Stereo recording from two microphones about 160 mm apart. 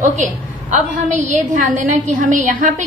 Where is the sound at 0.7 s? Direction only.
50° right (ahead or behind).